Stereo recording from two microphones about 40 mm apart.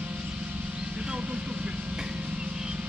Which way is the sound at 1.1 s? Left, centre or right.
Right.